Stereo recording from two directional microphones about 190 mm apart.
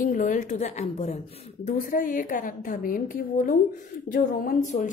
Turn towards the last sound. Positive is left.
turn(degrees=40)  # may be behind; listen again after turning